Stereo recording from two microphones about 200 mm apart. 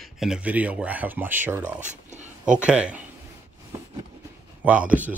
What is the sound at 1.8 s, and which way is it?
Speech, 35° right (ahead or behind).